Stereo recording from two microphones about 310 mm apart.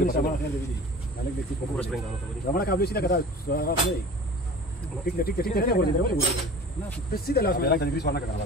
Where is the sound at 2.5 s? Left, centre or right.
Left.